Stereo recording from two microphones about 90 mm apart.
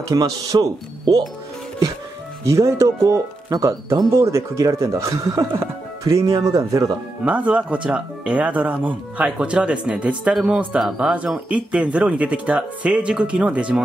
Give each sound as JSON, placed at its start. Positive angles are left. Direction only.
{"t": 0.1, "sound": "speech", "side_deg": -40}
{"t": 2.4, "sound": "speech", "side_deg": -35}
{"t": 7.2, "sound": "speech", "side_deg": -15}